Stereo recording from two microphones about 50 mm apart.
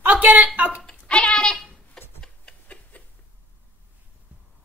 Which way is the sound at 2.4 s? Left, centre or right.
Left.